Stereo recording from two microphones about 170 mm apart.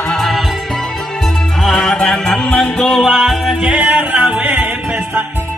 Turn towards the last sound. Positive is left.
turn(degrees=-10)  # may be behind; listen again after turning